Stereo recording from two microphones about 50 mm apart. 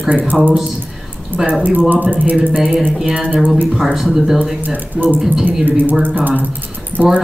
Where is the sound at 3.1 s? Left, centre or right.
Right.